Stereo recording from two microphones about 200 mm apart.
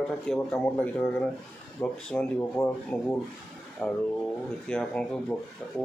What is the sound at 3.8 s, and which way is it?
Speech, 10° left (ahead or behind).